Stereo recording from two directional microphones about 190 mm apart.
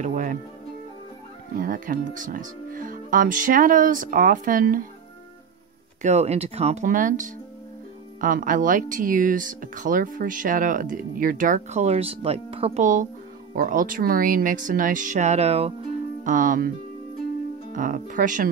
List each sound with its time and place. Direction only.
0.0 s speech: 45° right (ahead or behind)
1.6 s speech: 45° right (ahead or behind)
6.0 s speech: 35° right (ahead or behind)
16.3 s speech: 45° right (ahead or behind)
17.7 s speech: 45° right (ahead or behind)